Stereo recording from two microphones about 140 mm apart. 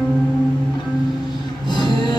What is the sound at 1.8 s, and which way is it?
Music, 30° left (ahead or behind).